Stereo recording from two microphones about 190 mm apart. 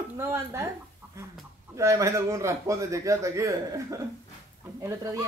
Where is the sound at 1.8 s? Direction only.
15° right (ahead or behind).